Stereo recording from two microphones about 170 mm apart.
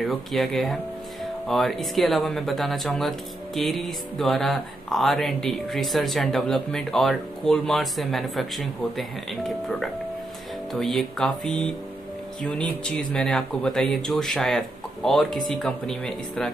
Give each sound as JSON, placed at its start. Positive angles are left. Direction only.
{"t": 0.0, "sound": "speech", "side_deg": 0}